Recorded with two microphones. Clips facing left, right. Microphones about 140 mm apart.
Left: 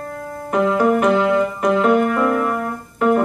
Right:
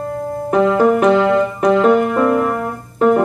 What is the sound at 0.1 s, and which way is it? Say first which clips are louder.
Music: right 5 dB; 30° right (ahead or behind).